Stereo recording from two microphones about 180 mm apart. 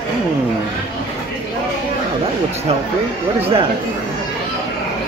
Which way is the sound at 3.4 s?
30° right (ahead or behind).